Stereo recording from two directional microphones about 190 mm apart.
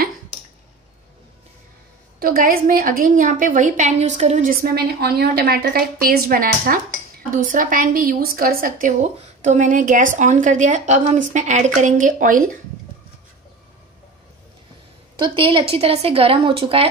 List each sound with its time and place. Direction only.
2.1 s a woman's voice: 50° right (ahead or behind)
15.1 s speech: 25° right (ahead or behind)